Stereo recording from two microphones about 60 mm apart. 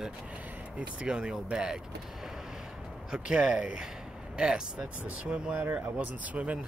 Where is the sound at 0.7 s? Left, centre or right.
Centre.